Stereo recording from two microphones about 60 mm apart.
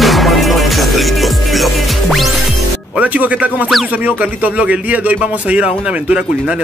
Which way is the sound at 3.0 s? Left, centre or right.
Right.